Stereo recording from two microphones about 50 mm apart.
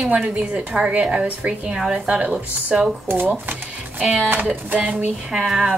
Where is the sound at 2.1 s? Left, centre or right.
Right.